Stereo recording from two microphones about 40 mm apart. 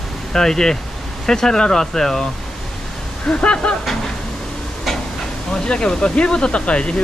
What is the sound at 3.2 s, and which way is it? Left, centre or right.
Speech, left.